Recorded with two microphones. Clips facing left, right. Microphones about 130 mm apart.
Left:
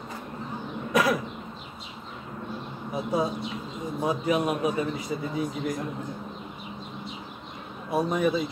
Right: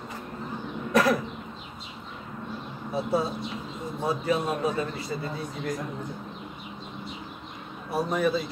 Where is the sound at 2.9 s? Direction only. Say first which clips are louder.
Even; 15° left (ahead or behind).